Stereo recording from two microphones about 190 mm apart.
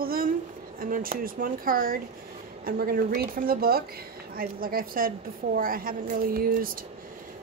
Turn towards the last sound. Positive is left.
turn(degrees=-50)  # may be behind; listen again after turning